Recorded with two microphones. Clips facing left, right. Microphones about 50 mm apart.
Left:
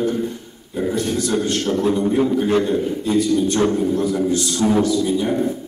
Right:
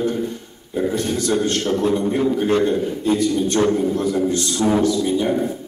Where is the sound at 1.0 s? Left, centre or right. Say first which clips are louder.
Even; centre.